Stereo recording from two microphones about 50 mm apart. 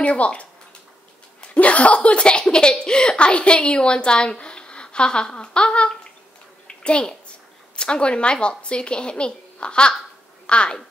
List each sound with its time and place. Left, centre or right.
0.0 s a woman's voice: left